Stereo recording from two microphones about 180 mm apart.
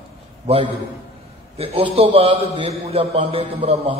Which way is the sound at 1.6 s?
35° right (ahead or behind).